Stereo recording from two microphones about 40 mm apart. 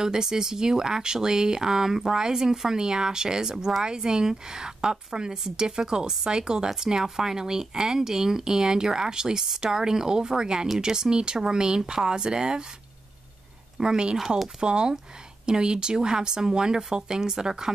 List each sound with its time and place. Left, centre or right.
0.0 s speech: centre
13.7 s speech: centre